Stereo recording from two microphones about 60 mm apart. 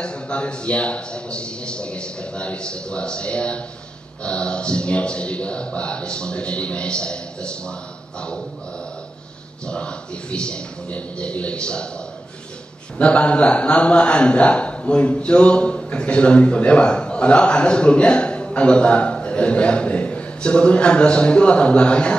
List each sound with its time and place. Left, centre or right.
0.0 s a man's voice: centre
9.7 s a man's voice: centre
12.9 s a man's voice: centre